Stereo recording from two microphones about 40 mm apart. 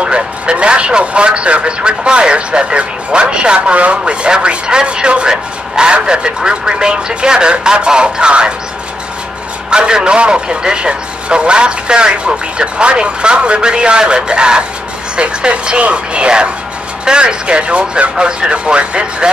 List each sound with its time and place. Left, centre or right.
0.0 s a man's voice: right
9.7 s a man's voice: right